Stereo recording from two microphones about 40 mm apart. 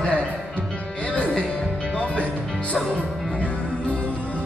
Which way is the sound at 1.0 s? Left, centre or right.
Left.